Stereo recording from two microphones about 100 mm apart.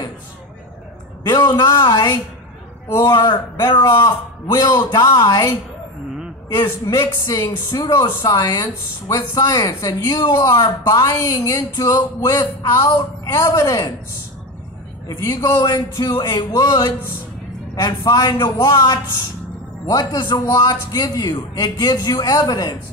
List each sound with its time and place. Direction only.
1.7 s speech: 30° left (ahead or behind)
3.2 s speech: 45° left (ahead or behind)
3.7 s speech: 35° left (ahead or behind)
6.5 s a man's voice: 25° left (ahead or behind)
7.4 s speech: 45° left (ahead or behind)
15.0 s speech: 35° left (ahead or behind)
17.7 s speech: 40° left (ahead or behind)
20.1 s speech: 45° left (ahead or behind)